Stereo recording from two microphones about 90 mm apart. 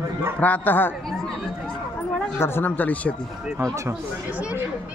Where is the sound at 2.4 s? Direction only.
25° left (ahead or behind).